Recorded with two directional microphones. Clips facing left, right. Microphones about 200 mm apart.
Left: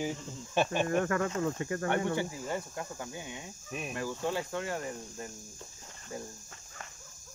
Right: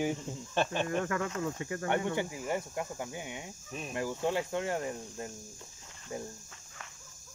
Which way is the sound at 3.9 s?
20° right (ahead or behind).